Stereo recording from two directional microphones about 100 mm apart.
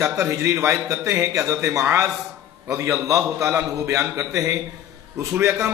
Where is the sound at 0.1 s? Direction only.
30° right (ahead or behind).